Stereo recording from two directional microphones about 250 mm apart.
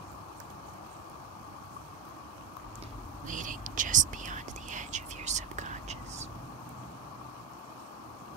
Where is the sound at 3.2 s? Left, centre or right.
Right.